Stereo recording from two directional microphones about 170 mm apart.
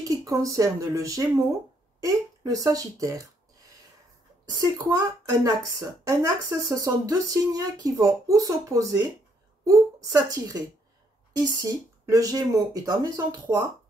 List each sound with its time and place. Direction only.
0.0 s speech: 20° right (ahead or behind)
4.5 s a woman's voice: 20° right (ahead or behind)
11.3 s speech: 20° right (ahead or behind)